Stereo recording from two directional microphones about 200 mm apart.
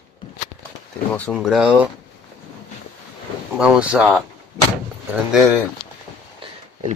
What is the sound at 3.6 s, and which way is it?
Speech, 5° right (ahead or behind).